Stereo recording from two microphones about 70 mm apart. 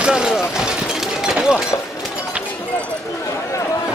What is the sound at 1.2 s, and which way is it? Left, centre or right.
Shatter, centre.